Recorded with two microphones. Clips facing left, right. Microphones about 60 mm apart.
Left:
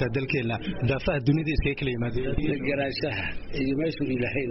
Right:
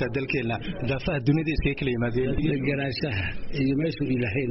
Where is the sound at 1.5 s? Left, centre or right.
Centre.